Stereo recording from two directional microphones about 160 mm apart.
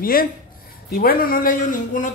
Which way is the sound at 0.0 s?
65° left (ahead or behind).